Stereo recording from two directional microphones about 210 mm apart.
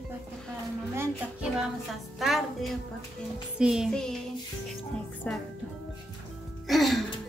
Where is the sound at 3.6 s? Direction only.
5° right (ahead or behind).